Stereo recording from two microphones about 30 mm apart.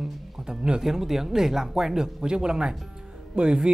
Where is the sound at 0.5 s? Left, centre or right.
Right.